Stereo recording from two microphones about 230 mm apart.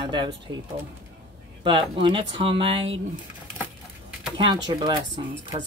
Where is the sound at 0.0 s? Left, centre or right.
Centre.